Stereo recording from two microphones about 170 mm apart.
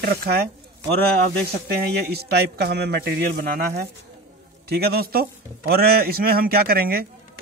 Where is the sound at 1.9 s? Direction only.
70° right (ahead or behind).